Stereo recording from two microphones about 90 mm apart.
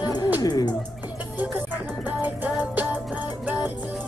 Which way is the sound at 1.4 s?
20° right (ahead or behind).